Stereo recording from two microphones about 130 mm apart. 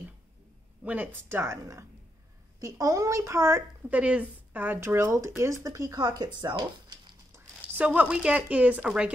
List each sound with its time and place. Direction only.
0.8 s a woman's voice: 15° right (ahead or behind); by 7.2 s 35° right (ahead or behind)
7.8 s speech: 10° right (ahead or behind)